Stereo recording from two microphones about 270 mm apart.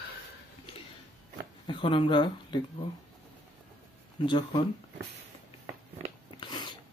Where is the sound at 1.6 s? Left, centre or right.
Centre.